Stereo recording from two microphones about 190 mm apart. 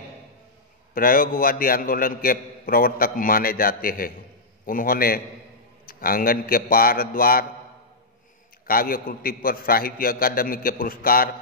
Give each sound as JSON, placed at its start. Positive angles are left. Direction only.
{"t": 0.9, "sound": "a man's voice", "side_deg": 45}
{"t": 8.6, "sound": "a man's voice", "side_deg": 50}